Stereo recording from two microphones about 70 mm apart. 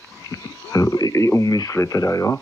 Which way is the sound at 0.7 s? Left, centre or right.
Left.